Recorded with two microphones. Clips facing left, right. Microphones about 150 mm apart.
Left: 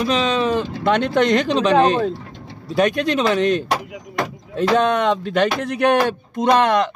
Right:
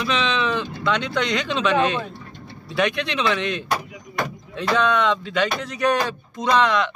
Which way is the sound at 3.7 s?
85° left.